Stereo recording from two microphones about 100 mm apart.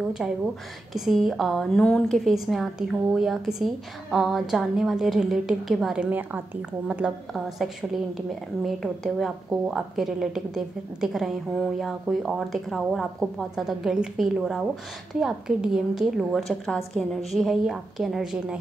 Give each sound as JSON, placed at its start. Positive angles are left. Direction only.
{"t": 0.2, "sound": "a woman's voice", "side_deg": -5}
{"t": 6.0, "sound": "a woman's voice", "side_deg": -15}
{"t": 7.3, "sound": "a woman's voice", "side_deg": 0}